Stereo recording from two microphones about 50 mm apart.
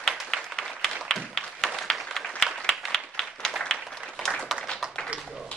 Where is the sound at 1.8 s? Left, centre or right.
Centre.